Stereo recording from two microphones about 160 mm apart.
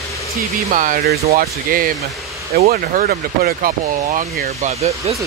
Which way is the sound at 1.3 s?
65° right (ahead or behind).